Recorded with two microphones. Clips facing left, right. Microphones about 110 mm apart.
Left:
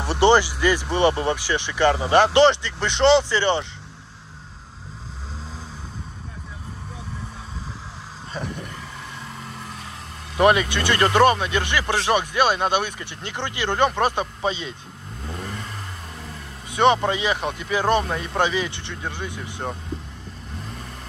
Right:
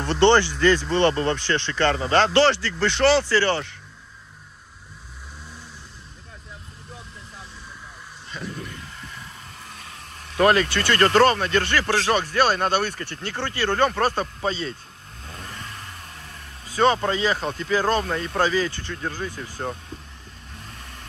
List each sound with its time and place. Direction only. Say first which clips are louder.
0.0 s speech: even; 15° left (ahead or behind)
10.3 s speech: left 1 dB; 15° left (ahead or behind)
16.6 s speech: left 2 dB; 20° left (ahead or behind)